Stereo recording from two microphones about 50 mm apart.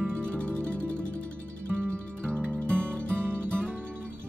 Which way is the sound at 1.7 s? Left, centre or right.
Right.